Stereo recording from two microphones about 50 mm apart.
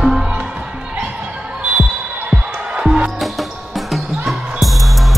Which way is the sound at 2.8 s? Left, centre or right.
Centre.